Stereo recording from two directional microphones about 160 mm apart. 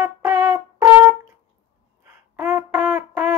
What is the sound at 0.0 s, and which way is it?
Brass instrument, 15° right (ahead or behind).